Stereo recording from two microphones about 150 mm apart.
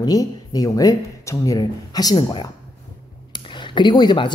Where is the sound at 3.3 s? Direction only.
30° left (ahead or behind).